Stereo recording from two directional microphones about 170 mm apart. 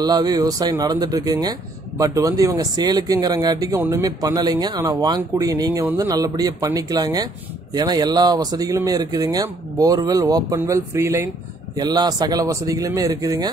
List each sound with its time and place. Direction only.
0.0 s speech: 25° right (ahead or behind)